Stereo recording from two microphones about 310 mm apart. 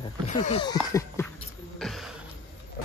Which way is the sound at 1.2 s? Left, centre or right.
Centre.